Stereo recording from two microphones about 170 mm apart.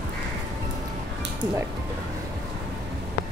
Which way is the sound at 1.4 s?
15° right (ahead or behind).